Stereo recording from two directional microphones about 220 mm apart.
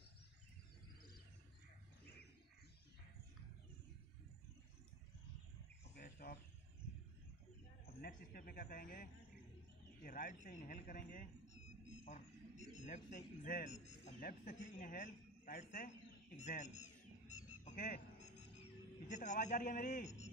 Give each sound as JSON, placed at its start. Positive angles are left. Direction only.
{"t": 5.9, "sound": "bird", "side_deg": 45}
{"t": 7.8, "sound": "a man's voice", "side_deg": 40}
{"t": 16.3, "sound": "a sound", "side_deg": 30}
{"t": 19.0, "sound": "a man's voice", "side_deg": 35}